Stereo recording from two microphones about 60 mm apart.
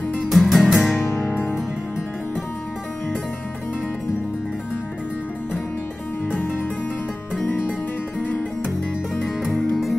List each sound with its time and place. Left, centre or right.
0.3 s music: centre
1.0 s music: left
7.4 s music: left